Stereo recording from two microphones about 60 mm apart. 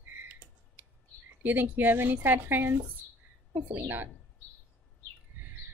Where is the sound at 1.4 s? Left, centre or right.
Right.